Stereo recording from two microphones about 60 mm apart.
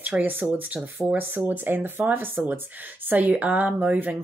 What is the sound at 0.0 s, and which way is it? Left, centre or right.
Speech, right.